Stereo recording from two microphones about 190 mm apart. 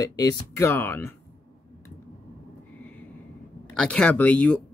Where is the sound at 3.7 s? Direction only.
5° left (ahead or behind).